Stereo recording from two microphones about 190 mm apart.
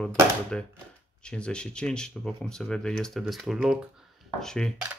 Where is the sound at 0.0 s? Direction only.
5° left (ahead or behind).